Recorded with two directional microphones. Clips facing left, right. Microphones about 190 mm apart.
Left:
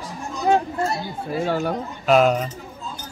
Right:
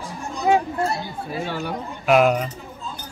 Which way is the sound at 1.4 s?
45° left (ahead or behind).